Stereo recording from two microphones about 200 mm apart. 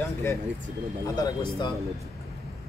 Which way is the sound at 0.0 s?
15° left (ahead or behind).